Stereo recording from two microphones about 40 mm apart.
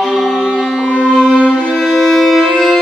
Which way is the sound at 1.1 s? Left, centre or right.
Centre.